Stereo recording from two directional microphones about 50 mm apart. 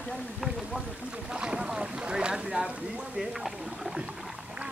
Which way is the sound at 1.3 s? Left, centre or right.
Centre.